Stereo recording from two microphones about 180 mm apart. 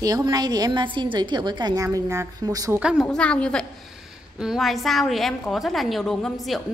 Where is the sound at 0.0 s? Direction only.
20° right (ahead or behind).